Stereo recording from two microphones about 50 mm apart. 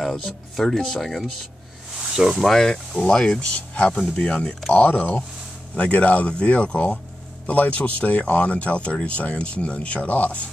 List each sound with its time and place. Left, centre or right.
0.0 s speech: centre
2.0 s snake: centre
2.5 s speech: centre; by 10.5 s left